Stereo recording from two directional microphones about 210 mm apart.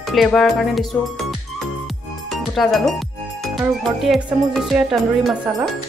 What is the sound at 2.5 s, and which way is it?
Music, centre (ahead or behind).